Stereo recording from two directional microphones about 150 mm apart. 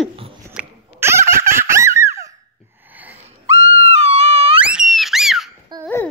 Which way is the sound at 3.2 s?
45° right (ahead or behind).